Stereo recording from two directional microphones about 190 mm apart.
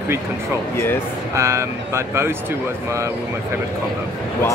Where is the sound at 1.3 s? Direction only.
15° right (ahead or behind).